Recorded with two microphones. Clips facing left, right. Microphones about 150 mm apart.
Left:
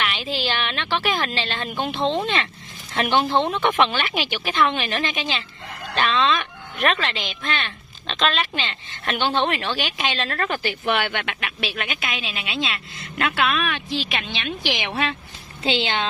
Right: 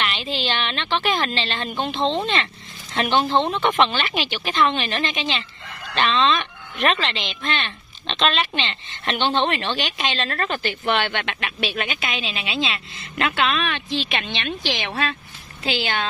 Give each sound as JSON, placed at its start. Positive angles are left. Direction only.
{"t": 0.0, "sound": "a woman's voice", "side_deg": 10}
{"t": 3.3, "sound": "speech", "side_deg": -20}
{"t": 3.6, "sound": "a woman's voice", "side_deg": 10}
{"t": 14.7, "sound": "a woman's voice", "side_deg": 15}